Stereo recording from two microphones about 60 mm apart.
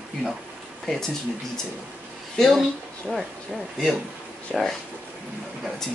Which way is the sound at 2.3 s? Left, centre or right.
Centre.